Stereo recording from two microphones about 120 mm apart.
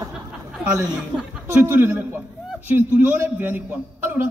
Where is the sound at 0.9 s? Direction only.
5° right (ahead or behind).